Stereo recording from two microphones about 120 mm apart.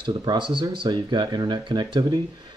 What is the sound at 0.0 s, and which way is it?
Speech, 40° right (ahead or behind).